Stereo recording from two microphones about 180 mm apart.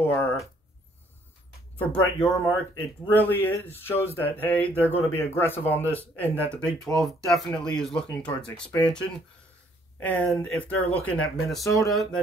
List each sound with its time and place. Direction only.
0.0 s speech: 10° left (ahead or behind)
1.8 s speech: 10° left (ahead or behind)
11.6 s speech: 20° left (ahead or behind)
11.9 s speech: centre (ahead or behind)